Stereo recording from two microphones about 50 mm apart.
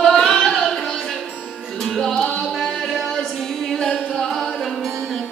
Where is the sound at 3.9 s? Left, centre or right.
Left.